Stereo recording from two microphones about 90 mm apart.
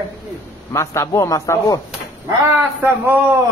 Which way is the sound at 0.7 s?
35° left (ahead or behind).